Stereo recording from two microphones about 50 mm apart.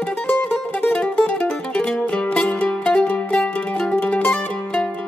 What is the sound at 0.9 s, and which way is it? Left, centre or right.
Music, left.